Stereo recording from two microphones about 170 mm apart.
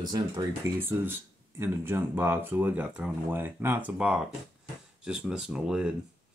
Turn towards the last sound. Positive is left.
turn(degrees=-5)  # may be behind; listen again after turning